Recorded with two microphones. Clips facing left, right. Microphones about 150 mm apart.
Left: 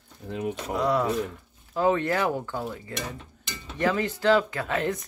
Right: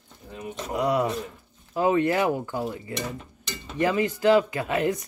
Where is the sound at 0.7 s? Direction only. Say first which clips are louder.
Right 1 dB; 15° right (ahead or behind).